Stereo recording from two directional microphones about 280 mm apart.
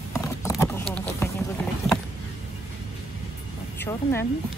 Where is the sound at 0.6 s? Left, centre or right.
Centre.